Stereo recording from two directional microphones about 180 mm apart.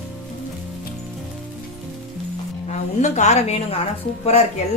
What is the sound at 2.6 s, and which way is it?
A woman's voice, 40° left (ahead or behind).